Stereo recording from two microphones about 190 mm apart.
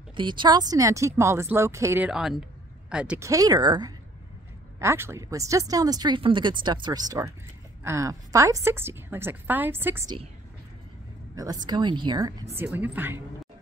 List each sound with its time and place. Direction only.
0.1 s speech: 25° right (ahead or behind); by 3.3 s 5° right (ahead or behind)
3.3 s speech: 20° right (ahead or behind)
11.3 s speech: 20° right (ahead or behind)
12.5 s speech: 10° right (ahead or behind)